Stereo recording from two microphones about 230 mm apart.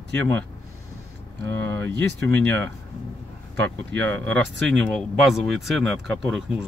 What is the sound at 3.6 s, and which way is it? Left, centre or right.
Speech, centre.